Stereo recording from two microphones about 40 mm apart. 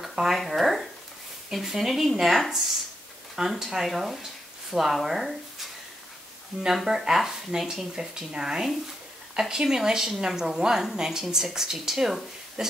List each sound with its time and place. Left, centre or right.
0.1 s a sound: centre
1.5 s a woman's voice: centre
6.7 s a woman's voice: centre